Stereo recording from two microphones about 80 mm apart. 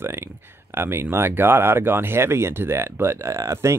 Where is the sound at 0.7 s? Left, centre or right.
Right.